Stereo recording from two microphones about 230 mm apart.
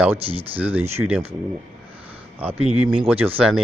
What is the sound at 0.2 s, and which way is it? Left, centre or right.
Speech, right.